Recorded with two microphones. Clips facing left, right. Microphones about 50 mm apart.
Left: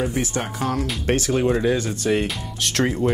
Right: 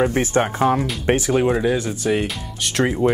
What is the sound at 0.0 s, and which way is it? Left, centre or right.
Speech, right.